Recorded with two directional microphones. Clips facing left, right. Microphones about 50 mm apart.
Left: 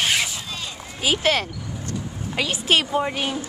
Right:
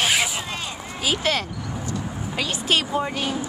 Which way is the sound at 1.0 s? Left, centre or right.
Left.